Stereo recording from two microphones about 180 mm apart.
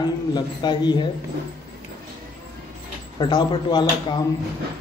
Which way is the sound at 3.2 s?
25° left (ahead or behind).